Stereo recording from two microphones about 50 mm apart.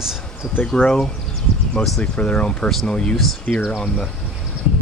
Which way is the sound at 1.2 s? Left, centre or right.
Centre.